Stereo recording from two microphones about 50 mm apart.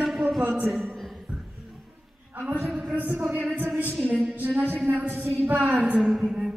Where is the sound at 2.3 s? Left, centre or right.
Right.